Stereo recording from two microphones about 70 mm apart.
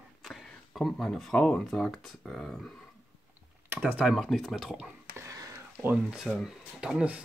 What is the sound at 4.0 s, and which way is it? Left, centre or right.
Speech, centre.